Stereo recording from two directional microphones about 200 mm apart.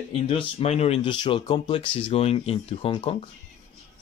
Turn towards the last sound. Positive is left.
turn(degrees=25)  # may be behind; listen again after turning